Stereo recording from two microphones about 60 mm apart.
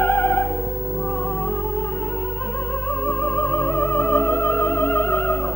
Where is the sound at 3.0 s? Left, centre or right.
Left.